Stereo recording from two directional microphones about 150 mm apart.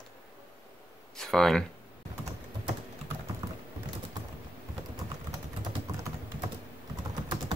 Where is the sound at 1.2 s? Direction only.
Centre (ahead or behind).